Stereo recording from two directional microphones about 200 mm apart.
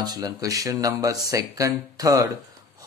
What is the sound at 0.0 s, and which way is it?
Speech, 20° right (ahead or behind).